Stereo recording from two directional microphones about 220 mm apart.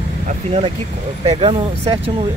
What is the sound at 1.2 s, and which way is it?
Speech, 25° right (ahead or behind).